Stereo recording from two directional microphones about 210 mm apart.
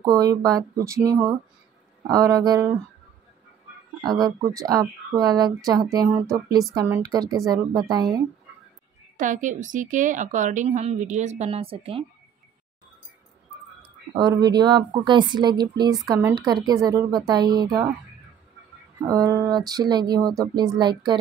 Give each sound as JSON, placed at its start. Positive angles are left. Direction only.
{"t": 0.0, "sound": "speech", "side_deg": -15}
{"t": 4.0, "sound": "speech", "side_deg": -20}
{"t": 9.1, "sound": "a woman's voice", "side_deg": -35}
{"t": 14.1, "sound": "speech", "side_deg": -20}
{"t": 18.9, "sound": "speech", "side_deg": -15}